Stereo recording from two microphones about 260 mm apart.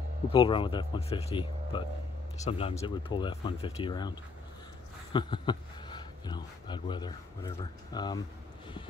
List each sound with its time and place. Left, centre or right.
0.3 s speech: centre
5.1 s speech: centre